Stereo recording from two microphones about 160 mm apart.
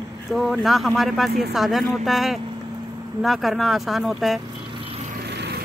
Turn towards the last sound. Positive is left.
turn(degrees=-90)